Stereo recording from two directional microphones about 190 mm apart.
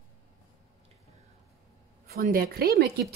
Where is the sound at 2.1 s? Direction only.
55° right (ahead or behind).